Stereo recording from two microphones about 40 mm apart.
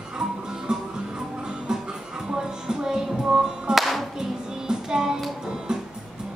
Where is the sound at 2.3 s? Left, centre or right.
Centre.